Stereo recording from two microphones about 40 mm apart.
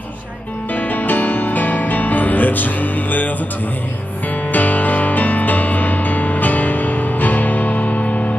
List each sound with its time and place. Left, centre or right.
0.7 s music: left
4.5 s music: left